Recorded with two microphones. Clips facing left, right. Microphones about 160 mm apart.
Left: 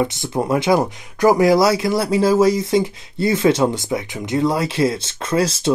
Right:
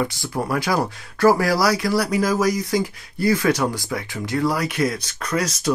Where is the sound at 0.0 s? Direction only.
20° left (ahead or behind).